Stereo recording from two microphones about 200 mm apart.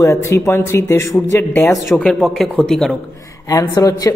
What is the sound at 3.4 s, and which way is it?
Speech, 15° left (ahead or behind).